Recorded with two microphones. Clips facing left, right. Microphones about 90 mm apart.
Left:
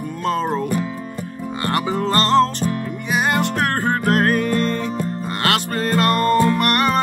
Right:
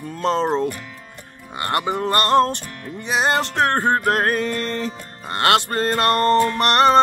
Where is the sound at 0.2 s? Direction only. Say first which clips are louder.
Right 2 dB; 25° right (ahead or behind).